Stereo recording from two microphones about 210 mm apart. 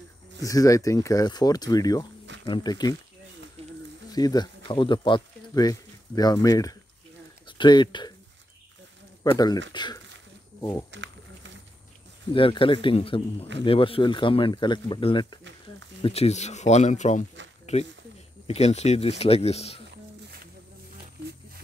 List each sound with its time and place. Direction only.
0.4 s speech: 15° left (ahead or behind)
3.6 s a sound: 30° right (ahead or behind)
4.1 s speech: 20° left (ahead or behind)
9.2 s speech: 20° left (ahead or behind)
10.9 s crumpling: 60° right (ahead or behind)
12.4 s speech: 25° left (ahead or behind)